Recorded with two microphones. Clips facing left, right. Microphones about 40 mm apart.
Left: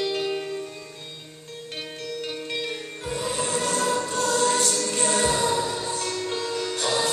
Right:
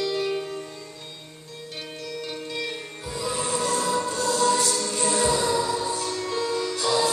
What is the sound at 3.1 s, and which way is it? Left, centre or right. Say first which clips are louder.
Music: even; left.